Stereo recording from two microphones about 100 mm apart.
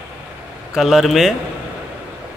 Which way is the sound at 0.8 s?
Centre (ahead or behind).